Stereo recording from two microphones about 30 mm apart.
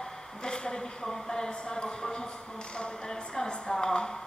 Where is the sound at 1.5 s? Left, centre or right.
Left.